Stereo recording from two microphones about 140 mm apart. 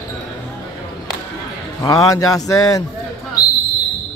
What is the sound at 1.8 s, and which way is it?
A man's voice, 25° left (ahead or behind).